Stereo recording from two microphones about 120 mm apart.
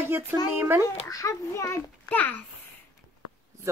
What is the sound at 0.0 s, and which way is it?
Speech, 20° right (ahead or behind).